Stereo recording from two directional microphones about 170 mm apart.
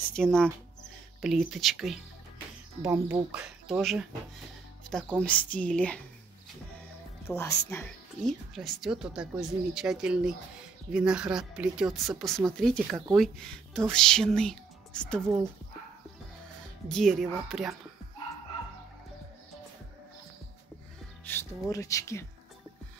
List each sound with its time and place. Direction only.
0.1 s speech: 5° left (ahead or behind)
2.9 s speech: 10° right (ahead or behind)
5.2 s speech: 10° left (ahead or behind)
7.2 s speech: 15° left (ahead or behind)
16.9 s speech: centre (ahead or behind)
21.3 s speech: 15° left (ahead or behind)